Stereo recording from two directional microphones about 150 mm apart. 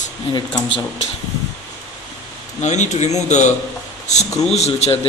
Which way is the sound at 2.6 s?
50° left (ahead or behind).